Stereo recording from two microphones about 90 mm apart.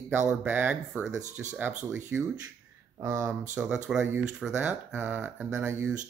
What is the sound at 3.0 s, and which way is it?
Speech, 35° right (ahead or behind).